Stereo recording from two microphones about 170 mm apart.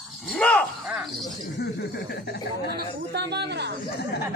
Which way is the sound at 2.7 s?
80° right.